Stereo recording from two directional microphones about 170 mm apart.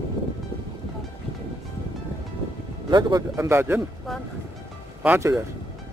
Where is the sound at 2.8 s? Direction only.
25° right (ahead or behind).